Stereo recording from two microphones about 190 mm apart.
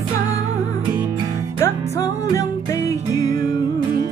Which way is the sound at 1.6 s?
15° left (ahead or behind).